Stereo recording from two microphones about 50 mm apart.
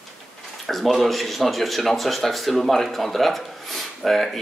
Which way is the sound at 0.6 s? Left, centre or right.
Centre.